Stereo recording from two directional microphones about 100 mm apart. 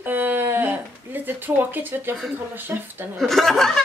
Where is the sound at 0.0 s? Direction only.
20° right (ahead or behind).